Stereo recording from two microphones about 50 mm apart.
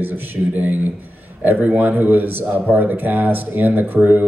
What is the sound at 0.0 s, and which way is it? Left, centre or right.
Speech, right.